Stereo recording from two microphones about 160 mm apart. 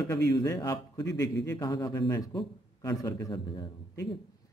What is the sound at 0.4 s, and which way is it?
A man's voice, 25° left (ahead or behind).